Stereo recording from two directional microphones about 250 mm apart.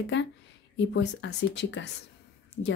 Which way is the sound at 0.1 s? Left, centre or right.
Left.